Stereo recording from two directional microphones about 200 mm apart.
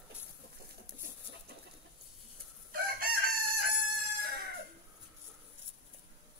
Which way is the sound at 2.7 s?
45° right (ahead or behind).